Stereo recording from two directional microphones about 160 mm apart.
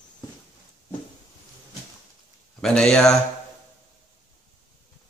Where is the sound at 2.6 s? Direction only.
5° left (ahead or behind).